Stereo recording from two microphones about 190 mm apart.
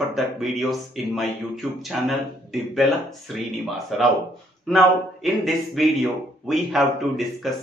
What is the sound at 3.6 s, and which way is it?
Speech, centre (ahead or behind).